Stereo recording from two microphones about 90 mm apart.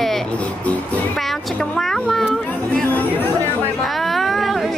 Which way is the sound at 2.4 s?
15° left (ahead or behind).